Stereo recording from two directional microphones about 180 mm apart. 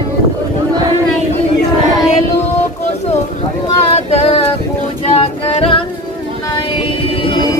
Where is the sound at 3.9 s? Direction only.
35° left (ahead or behind).